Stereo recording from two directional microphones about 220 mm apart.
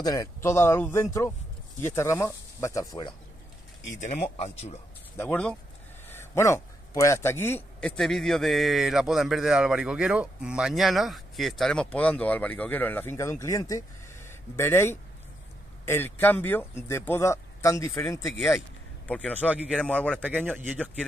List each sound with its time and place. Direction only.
0.0 s speech: 15° left (ahead or behind)
3.9 s speech: 35° left (ahead or behind)
5.1 s a man's voice: 10° left (ahead or behind)
19.0 s a man's voice: 5° left (ahead or behind)
20.3 s speech: 10° right (ahead or behind)